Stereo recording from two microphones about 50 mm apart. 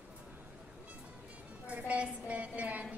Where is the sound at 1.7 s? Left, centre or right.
Right.